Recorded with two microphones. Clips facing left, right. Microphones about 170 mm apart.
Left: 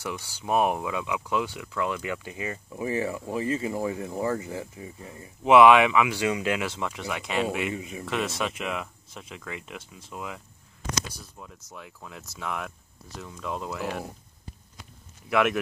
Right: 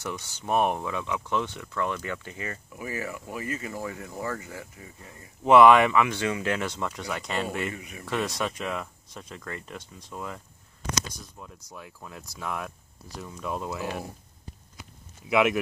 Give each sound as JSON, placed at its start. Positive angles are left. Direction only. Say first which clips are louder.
{"t": 0.0, "sound": "speech", "louder": "left 1 dB", "side_deg": 5}
{"t": 2.8, "sound": "speech", "louder": "left 6 dB", "side_deg": 25}
{"t": 5.4, "sound": "speech", "louder": "even", "side_deg": 5}
{"t": 6.1, "sound": "speech", "louder": "left 2 dB", "side_deg": 15}
{"t": 7.7, "sound": "speech", "louder": "left 6 dB", "side_deg": 25}
{"t": 8.0, "sound": "speech", "louder": "right 1 dB", "side_deg": 0}
{"t": 14.8, "sound": "a sound", "louder": "right 2 dB", "side_deg": -5}